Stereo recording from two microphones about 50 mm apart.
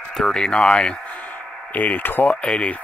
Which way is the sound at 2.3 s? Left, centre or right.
Left.